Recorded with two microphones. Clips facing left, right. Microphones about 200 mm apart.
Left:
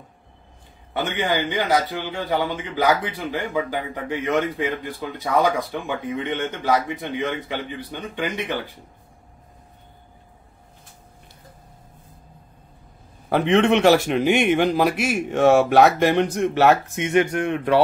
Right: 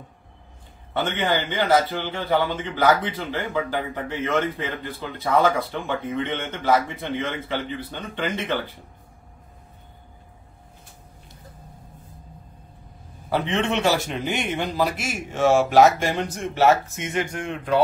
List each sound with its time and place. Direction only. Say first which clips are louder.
0.9 s a man's voice: even; 15° left (ahead or behind)
13.3 s a man's voice: left 6 dB; 65° left (ahead or behind)